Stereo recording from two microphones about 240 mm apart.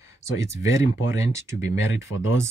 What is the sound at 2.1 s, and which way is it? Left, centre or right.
Speech, left.